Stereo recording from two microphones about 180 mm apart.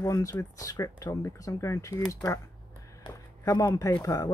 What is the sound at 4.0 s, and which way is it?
Speech, 20° left (ahead or behind).